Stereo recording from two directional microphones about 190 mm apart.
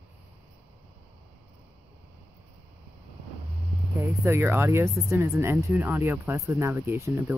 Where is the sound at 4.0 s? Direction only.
10° right (ahead or behind).